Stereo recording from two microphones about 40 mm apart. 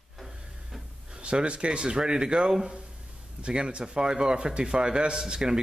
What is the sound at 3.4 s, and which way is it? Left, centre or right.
Speech, right.